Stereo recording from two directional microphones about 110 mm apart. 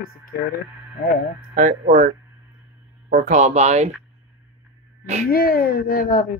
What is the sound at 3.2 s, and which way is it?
Speech, 90° right.